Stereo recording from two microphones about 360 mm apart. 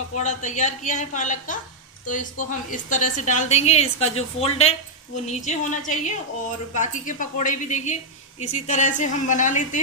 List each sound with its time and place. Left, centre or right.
0.1 s a woman's voice: centre